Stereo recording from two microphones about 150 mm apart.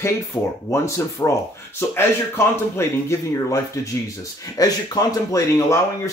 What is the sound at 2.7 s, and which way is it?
Speech, 20° left (ahead or behind).